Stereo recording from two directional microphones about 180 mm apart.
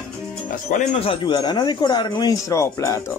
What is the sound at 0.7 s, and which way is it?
Speech, 45° left (ahead or behind).